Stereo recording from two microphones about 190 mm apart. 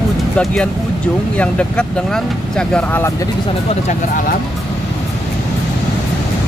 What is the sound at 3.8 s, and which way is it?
Speech, 45° left (ahead or behind).